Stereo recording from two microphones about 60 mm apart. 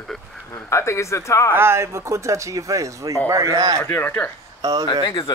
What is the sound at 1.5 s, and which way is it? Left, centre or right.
Speech, right.